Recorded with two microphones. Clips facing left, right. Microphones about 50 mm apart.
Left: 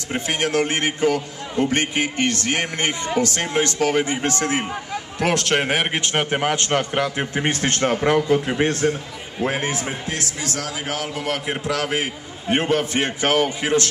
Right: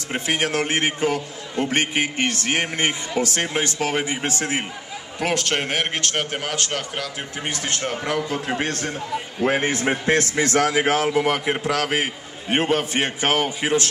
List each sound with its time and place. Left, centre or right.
0.1 s a man's voice: centre
5.2 s a man's voice: centre; by 8.4 s left
9.4 s a man's voice: right
9.8 s a man's voice: right
11.1 s a man's voice: right
11.6 s a man's voice: right
12.4 s a man's voice: right